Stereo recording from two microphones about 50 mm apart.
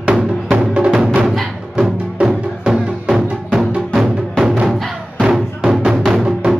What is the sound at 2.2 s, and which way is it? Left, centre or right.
Music, centre.